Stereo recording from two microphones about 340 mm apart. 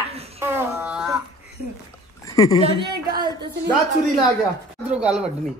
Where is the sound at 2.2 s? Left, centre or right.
Centre.